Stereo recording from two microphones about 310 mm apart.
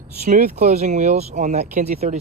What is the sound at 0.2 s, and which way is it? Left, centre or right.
Speech, right.